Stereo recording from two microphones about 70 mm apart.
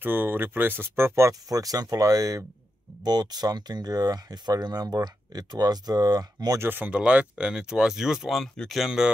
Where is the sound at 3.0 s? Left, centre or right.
Right.